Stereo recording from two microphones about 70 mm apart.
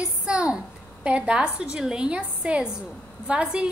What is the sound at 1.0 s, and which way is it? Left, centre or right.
A woman's voice, centre.